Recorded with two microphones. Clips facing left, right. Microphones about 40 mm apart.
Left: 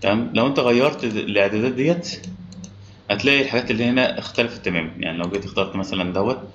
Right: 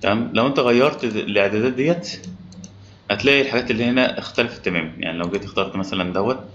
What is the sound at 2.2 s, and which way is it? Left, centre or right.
Clicking, left.